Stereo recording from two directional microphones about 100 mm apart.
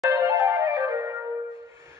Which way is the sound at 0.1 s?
35° right (ahead or behind).